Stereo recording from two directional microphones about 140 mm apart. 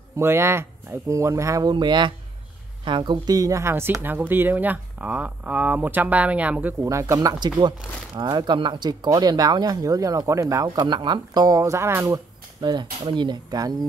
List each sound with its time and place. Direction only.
0.2 s speech: 20° right (ahead or behind)
13.0 s speech: 35° right (ahead or behind)